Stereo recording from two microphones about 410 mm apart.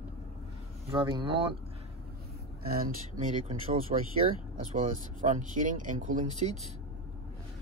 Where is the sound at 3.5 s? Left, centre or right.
Right.